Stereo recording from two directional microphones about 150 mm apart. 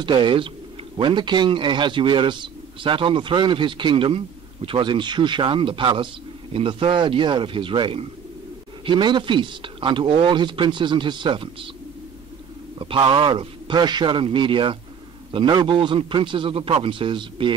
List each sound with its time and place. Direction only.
0.0 s a man's voice: 30° right (ahead or behind)
12.7 s a man's voice: 35° right (ahead or behind)